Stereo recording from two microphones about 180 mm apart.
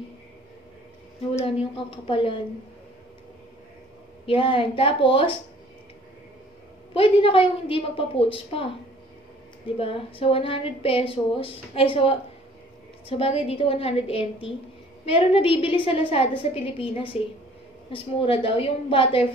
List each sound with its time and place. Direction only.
1.4 s a woman's voice: 30° left (ahead or behind)
4.3 s a woman's voice: 30° left (ahead or behind)
6.9 s a woman's voice: 30° left (ahead or behind)
9.8 s a woman's voice: 30° left (ahead or behind)